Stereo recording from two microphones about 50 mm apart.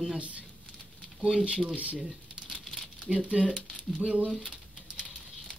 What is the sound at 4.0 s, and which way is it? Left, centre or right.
Speech, right.